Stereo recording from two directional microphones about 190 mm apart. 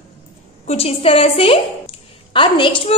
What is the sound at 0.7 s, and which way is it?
A woman's voice, 30° left (ahead or behind).